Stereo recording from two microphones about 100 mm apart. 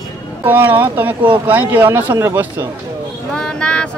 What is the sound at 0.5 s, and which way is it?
Speech, 20° right (ahead or behind).